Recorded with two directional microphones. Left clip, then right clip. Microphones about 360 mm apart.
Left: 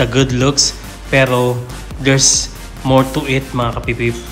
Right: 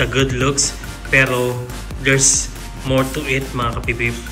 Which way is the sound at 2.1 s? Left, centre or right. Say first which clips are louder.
Left 3 dB; centre.